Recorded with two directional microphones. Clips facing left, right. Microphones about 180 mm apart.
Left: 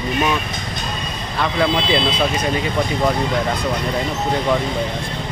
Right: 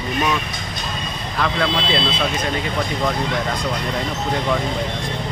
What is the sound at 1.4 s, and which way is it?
Speech, 10° left (ahead or behind).